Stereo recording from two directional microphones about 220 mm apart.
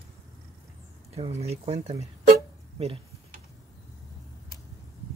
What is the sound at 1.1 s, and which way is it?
Speech, 30° right (ahead or behind).